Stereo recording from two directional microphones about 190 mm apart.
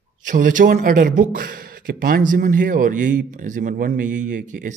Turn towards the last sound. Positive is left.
turn(degrees=-40)  # may be behind; listen again after turning